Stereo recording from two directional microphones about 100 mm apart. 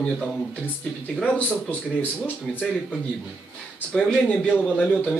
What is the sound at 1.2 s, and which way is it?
Speech, 15° left (ahead or behind).